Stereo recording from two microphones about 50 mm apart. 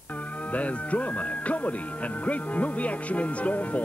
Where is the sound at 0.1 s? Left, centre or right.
Left.